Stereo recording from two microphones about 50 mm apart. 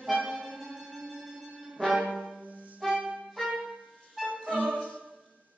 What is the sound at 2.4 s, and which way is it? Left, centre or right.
Music, right.